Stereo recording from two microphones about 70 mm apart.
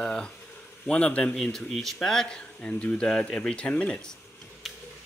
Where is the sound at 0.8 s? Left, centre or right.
Centre.